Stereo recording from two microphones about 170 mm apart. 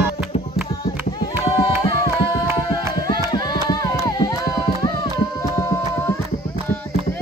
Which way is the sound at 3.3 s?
25° left (ahead or behind).